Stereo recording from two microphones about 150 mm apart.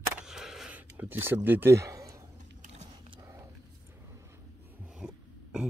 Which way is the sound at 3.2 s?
20° right (ahead or behind).